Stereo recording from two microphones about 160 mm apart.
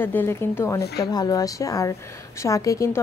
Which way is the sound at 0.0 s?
10° left (ahead or behind).